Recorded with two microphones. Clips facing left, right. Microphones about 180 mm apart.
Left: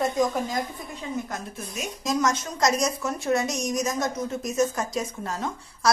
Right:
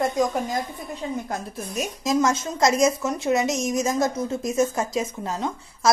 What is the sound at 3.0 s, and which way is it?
A woman's voice, 20° right (ahead or behind).